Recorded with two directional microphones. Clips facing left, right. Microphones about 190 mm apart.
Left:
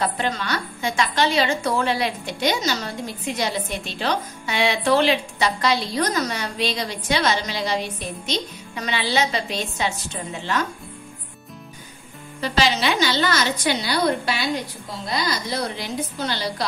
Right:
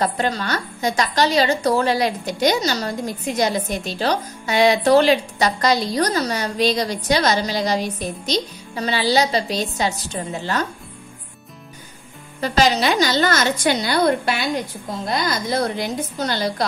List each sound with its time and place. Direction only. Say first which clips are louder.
0.0 s a woman's voice: right 3 dB; 40° right (ahead or behind)
12.4 s a woman's voice: right 4 dB; 45° right (ahead or behind)